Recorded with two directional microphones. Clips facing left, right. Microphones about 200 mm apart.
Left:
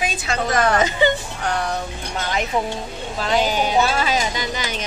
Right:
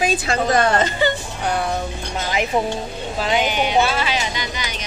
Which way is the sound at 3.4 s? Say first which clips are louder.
Even; 35° left (ahead or behind).